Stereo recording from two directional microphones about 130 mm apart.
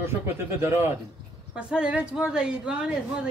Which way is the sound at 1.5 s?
10° right (ahead or behind).